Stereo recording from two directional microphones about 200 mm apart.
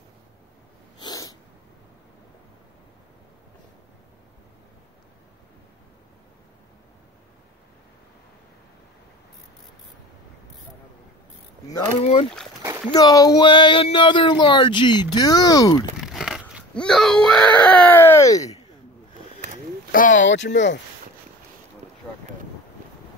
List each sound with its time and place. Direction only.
0.9 s dog: 20° left (ahead or behind)
12.0 s speech: 30° left (ahead or behind)
12.9 s speech: 20° left (ahead or behind)
16.0 s wail: centre (ahead or behind); by 18.7 s 15° left (ahead or behind)
19.9 s speech: 45° left (ahead or behind)
20.2 s speech: 65° left (ahead or behind)